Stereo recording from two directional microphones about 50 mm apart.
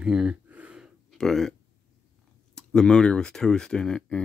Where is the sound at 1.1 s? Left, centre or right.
Centre.